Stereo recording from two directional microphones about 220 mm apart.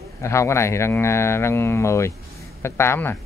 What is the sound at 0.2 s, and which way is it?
Speech, 15° left (ahead or behind).